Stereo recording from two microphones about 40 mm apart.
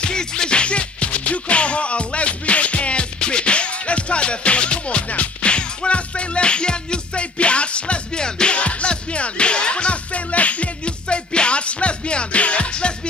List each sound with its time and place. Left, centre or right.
0.0 s music: centre